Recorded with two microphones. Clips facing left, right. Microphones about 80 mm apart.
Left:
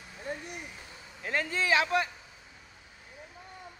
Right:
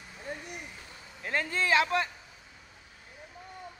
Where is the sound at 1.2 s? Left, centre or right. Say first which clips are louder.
Even; centre.